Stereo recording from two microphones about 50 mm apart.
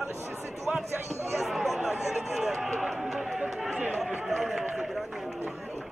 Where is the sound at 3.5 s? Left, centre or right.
Centre.